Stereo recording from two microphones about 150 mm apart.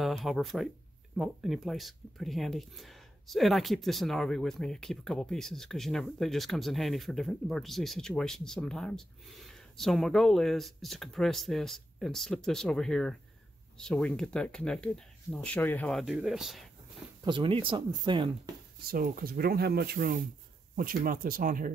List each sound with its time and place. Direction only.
0.0 s speech: centre (ahead or behind)
17.2 s speech: 35° right (ahead or behind)
18.9 s speech: 75° right (ahead or behind)